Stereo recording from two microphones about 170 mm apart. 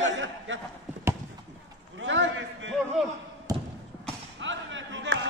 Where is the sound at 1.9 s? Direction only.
90° right.